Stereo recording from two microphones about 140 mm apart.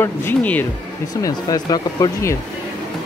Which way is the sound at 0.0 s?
15° left (ahead or behind).